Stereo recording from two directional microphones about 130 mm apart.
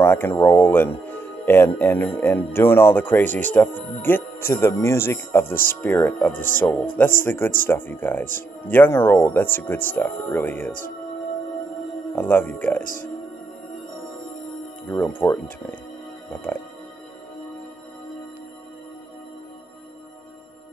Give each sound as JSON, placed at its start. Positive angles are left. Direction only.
{"t": 0.0, "sound": "speech", "side_deg": 15}
{"t": 12.2, "sound": "speech", "side_deg": 15}
{"t": 12.8, "sound": "speech", "side_deg": 90}
{"t": 14.9, "sound": "speech", "side_deg": 15}
{"t": 16.3, "sound": "music", "side_deg": 10}